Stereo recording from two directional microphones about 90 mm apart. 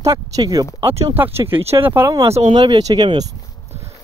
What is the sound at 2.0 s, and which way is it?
Speech, 40° right (ahead or behind).